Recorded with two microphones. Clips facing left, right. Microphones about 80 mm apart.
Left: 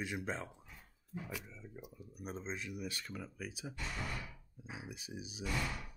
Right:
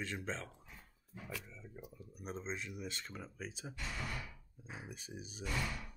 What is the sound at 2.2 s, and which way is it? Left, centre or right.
Speech, centre.